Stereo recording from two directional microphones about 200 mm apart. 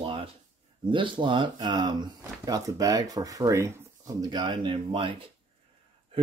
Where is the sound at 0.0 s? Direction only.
25° right (ahead or behind).